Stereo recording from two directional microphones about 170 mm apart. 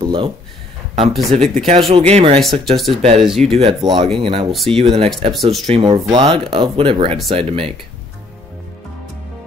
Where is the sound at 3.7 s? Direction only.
25° right (ahead or behind).